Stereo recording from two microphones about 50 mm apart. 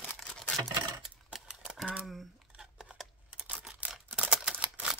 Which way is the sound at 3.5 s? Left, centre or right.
Right.